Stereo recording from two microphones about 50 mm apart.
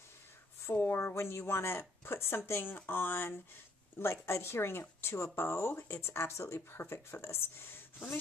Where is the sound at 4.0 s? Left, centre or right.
Left.